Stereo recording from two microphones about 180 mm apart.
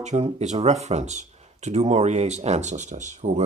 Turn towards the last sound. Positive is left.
turn(degrees=-40)  # may be behind; listen again after turning